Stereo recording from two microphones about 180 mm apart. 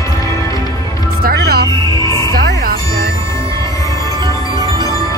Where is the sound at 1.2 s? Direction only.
60° right (ahead or behind).